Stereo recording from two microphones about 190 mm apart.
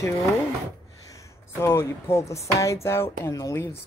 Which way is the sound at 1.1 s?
15° left (ahead or behind).